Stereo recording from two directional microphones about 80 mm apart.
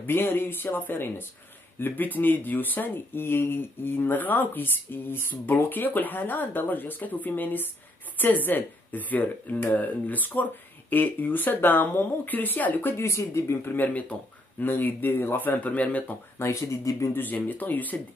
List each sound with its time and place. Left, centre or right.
0.0 s speech: left
12.9 s speech: left
13.7 s speech: centre
16.3 s speech: left
17.1 s speech: left